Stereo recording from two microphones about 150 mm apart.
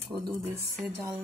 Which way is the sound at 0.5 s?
15° right (ahead or behind).